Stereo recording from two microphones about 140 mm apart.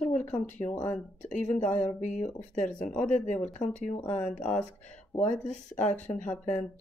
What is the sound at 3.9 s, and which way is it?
Speech, 10° left (ahead or behind).